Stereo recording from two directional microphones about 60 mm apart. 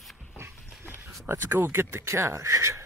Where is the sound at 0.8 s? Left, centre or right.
Right.